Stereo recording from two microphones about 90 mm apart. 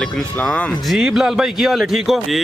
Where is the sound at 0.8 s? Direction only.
Centre (ahead or behind).